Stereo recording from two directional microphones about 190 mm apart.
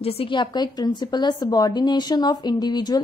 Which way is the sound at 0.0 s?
30° left (ahead or behind).